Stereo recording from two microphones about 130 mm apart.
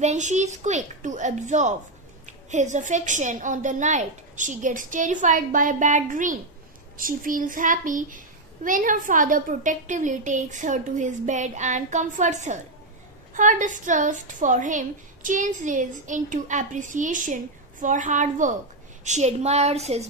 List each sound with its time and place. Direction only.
0.0 s a woman's voice: 65° right (ahead or behind)
13.3 s a woman's voice: 80° right
19.0 s speech: 60° right (ahead or behind)